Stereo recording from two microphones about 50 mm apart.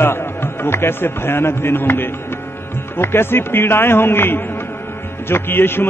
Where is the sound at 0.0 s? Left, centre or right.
Left.